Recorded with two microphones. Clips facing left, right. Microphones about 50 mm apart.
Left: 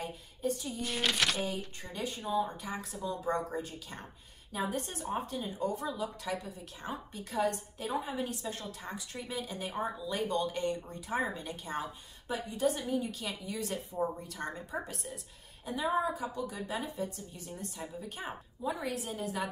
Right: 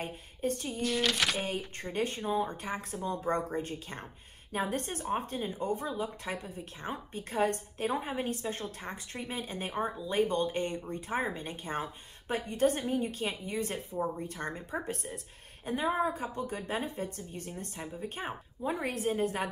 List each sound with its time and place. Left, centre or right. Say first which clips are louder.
0.0 s speech: right 1 dB; right
0.8 s speech: right 3 dB; centre
1.8 s speech: right 5 dB; right
12.4 s speech: right 3 dB; right